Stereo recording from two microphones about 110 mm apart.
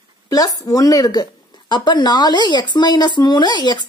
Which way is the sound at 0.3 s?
35° left (ahead or behind).